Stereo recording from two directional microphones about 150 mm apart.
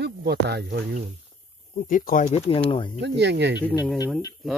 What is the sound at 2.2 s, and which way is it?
Speech, 45° left (ahead or behind).